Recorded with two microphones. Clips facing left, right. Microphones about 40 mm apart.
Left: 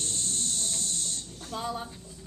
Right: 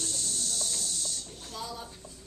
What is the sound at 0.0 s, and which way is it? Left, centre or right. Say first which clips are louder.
Snake: left 1 dB; left.